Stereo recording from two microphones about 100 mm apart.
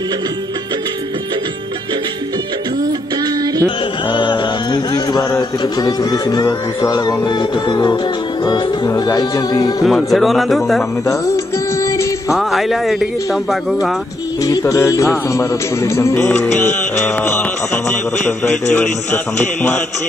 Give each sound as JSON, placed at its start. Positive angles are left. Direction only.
{"t": 4.1, "sound": "speech", "side_deg": 50}
{"t": 8.5, "sound": "music", "side_deg": 40}
{"t": 9.8, "sound": "speech", "side_deg": 0}
{"t": 11.1, "sound": "music", "side_deg": 30}
{"t": 12.4, "sound": "speech", "side_deg": 0}
{"t": 14.6, "sound": "speech", "side_deg": 30}